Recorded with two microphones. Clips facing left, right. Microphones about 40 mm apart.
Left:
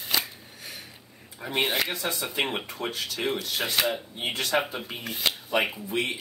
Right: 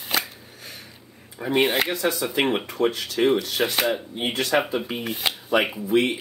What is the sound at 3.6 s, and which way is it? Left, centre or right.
Speech, right.